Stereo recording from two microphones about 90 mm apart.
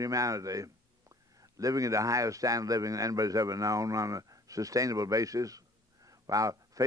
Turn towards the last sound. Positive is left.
turn(degrees=-40)  # may be behind; listen again after turning